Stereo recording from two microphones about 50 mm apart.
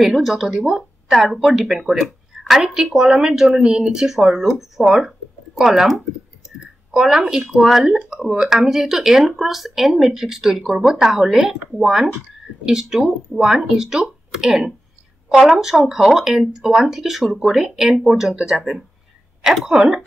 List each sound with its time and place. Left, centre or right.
0.0 s speech: centre
19.7 s speech: centre